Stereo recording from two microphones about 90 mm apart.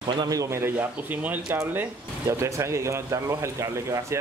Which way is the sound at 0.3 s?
35° right (ahead or behind).